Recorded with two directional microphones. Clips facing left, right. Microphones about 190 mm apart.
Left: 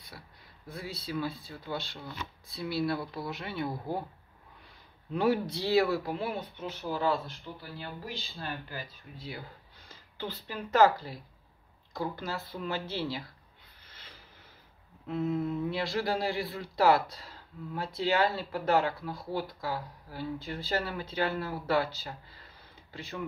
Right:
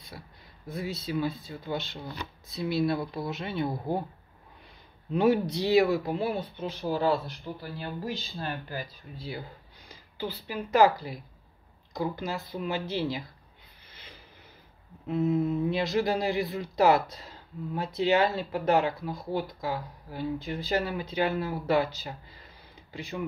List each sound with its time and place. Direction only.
0.7 s speech: 20° right (ahead or behind)
5.1 s speech: 20° right (ahead or behind); by 9.3 s 40° right (ahead or behind)
9.8 s speech: 10° right (ahead or behind)
13.8 s a sound: 20° right (ahead or behind)
15.0 s speech: 20° right (ahead or behind)